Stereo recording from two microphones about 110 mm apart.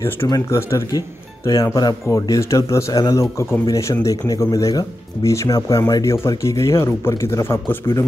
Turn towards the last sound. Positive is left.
turn(degrees=20)  # may be behind; listen again after turning